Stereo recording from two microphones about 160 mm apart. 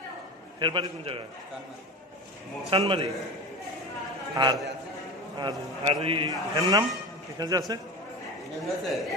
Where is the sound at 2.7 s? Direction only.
35° right (ahead or behind).